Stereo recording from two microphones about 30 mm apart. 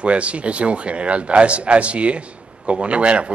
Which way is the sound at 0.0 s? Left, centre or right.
Right.